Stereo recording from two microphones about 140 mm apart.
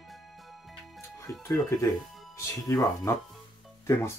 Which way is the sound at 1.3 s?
20° left (ahead or behind).